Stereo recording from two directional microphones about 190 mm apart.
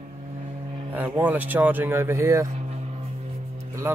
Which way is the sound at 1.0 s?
10° right (ahead or behind).